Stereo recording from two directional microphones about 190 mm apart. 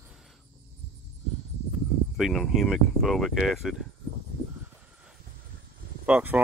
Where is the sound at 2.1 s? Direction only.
Centre (ahead or behind).